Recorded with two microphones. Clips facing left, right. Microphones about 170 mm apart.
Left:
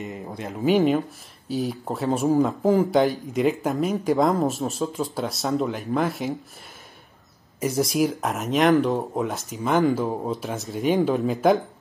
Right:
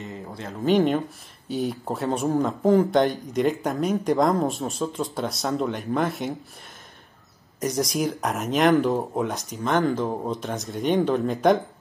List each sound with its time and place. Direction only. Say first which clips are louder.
0.0 s speech: left 3 dB; 15° left (ahead or behind)
0.7 s speech: left 1 dB; 5° left (ahead or behind)
7.6 s speech: left 3 dB; centre (ahead or behind)